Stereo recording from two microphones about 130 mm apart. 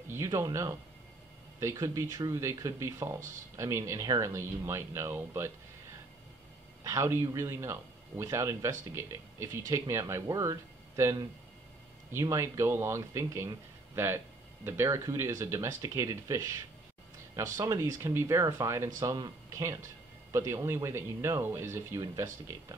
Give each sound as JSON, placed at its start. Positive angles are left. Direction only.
{"t": 0.1, "sound": "speech", "side_deg": -25}
{"t": 6.8, "sound": "speech", "side_deg": -25}